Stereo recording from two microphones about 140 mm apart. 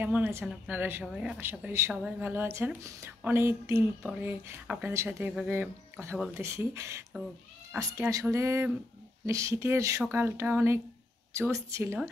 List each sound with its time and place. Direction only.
0.0 s speech: 10° right (ahead or behind)
6.4 s speech: 20° right (ahead or behind)